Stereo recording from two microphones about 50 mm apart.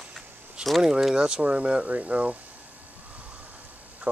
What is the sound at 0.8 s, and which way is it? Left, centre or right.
Speech, centre.